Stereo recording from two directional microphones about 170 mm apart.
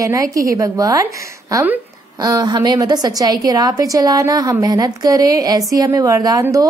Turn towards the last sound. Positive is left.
turn(degrees=-20)  # may be behind; listen again after turning